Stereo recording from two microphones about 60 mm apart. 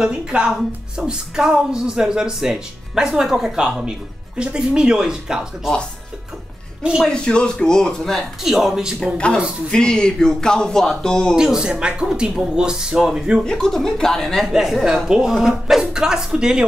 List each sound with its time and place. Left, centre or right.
0.0 s a woman's voice: centre
7.1 s speech: centre
9.0 s speech: centre
11.3 s a woman's voice: centre
13.5 s speech: centre
14.4 s a woman's voice: centre